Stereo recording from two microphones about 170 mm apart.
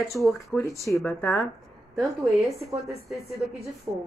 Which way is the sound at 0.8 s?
15° left (ahead or behind).